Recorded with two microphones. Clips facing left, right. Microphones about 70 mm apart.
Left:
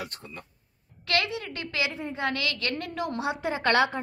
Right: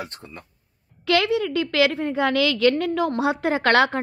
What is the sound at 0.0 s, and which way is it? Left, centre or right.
Speech, right.